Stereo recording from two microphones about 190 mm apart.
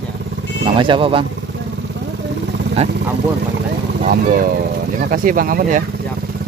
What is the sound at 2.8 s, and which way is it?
Speech, 35° right (ahead or behind).